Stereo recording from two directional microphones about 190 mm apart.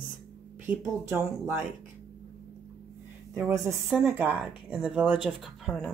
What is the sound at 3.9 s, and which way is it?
Speech, centre (ahead or behind).